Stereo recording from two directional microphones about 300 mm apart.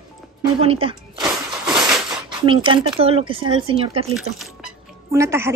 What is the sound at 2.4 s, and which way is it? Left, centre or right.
Speech, centre.